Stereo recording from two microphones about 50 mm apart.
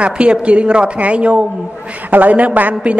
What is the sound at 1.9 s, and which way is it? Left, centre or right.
Speech, right.